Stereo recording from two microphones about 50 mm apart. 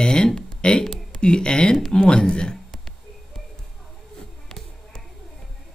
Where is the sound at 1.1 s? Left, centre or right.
Centre.